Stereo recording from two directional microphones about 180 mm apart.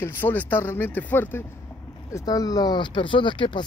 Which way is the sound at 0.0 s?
10° left (ahead or behind).